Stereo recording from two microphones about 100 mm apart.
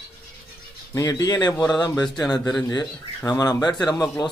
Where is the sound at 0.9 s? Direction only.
35° left (ahead or behind).